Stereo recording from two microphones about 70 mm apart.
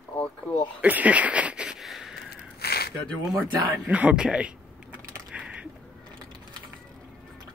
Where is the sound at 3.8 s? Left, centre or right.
Centre.